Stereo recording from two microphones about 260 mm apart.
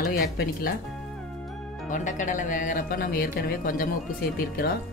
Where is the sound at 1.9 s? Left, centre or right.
Left.